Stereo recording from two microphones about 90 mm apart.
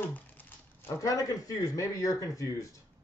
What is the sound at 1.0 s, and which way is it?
A man's voice, 40° left (ahead or behind).